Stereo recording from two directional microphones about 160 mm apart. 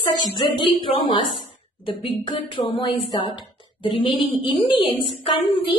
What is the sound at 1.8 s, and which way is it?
A child's voice, 30° left (ahead or behind).